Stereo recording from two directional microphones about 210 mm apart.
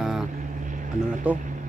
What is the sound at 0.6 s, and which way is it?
Vehicle, 40° right (ahead or behind).